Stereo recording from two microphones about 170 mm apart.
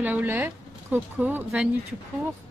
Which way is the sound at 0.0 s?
10° right (ahead or behind).